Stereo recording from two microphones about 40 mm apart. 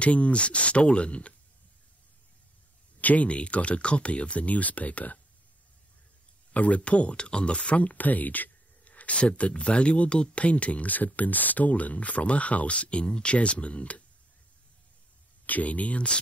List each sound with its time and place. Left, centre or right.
0.0 s speech: left
3.0 s speech: left
6.5 s speech: left
15.4 s speech: left